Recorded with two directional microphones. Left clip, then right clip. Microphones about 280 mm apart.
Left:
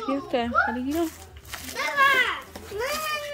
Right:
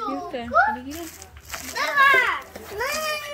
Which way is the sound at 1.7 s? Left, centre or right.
Centre.